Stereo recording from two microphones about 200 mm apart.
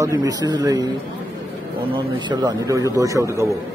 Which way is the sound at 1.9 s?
20° right (ahead or behind).